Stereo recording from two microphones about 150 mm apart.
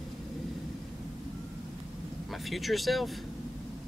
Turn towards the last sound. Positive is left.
turn(degrees=0)  # may be behind; listen again after turning